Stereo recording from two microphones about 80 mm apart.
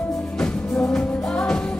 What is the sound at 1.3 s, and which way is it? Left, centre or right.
Music, centre.